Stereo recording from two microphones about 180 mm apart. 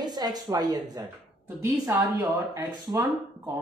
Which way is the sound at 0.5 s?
20° right (ahead or behind).